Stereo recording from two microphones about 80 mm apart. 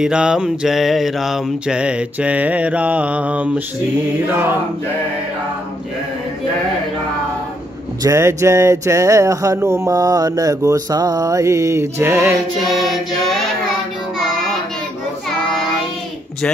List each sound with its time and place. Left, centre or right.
0.0 s mantra: centre
8.0 s a sound: right
12.6 s chant: centre